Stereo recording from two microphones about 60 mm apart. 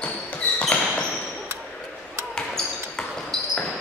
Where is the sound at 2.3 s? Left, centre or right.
Centre.